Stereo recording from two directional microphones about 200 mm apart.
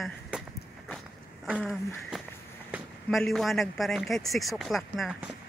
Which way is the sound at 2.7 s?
Centre (ahead or behind).